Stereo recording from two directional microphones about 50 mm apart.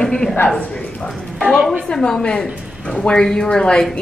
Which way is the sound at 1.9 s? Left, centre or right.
Centre.